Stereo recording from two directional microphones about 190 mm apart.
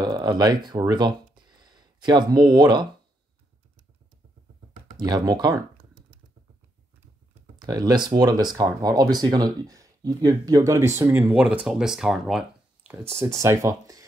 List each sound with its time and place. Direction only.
0.0 s speech: 20° right (ahead or behind)
4.9 s speech: 20° right (ahead or behind)
7.5 s speech: 20° right (ahead or behind)